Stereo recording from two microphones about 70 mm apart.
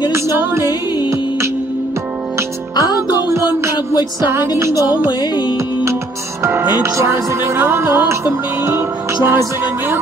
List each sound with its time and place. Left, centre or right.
0.1 s music: right
2.8 s music: right
4.2 s speech: right
4.6 s music: right
5.2 s music: left
7.0 s speech: right